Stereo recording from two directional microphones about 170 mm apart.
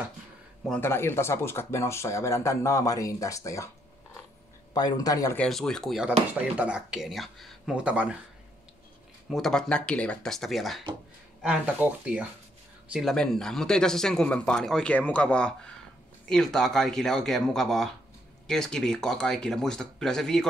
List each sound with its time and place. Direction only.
0.7 s speech: 15° left (ahead or behind)
4.7 s speech: 20° left (ahead or behind)
5.4 s speech: 5° left (ahead or behind)
9.3 s speech: 5° left (ahead or behind)